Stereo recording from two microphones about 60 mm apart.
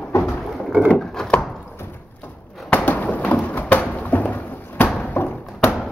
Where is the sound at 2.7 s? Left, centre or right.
Left.